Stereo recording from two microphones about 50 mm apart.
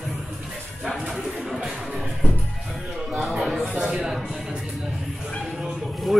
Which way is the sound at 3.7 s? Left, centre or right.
Centre.